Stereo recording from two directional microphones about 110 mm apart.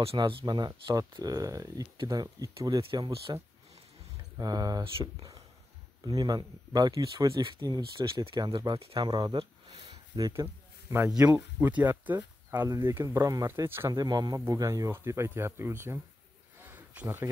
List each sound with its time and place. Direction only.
0.2 s speech: 45° right (ahead or behind)
7.2 s speech: 50° right (ahead or behind)
9.4 s a sound: 65° right (ahead or behind)
10.1 s speech: 35° right (ahead or behind)
10.9 s speech: 20° right (ahead or behind)
13.7 s speech: 20° right (ahead or behind)
13.9 s speech: 35° right (ahead or behind)
16.6 s a sound: 15° right (ahead or behind)